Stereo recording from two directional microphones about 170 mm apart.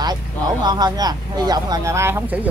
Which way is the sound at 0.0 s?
25° right (ahead or behind).